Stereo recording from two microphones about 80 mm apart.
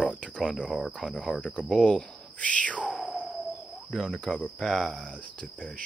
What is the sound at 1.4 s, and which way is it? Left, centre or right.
Speech, centre.